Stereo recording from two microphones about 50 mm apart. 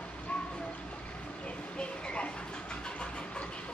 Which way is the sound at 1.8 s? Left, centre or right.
Left.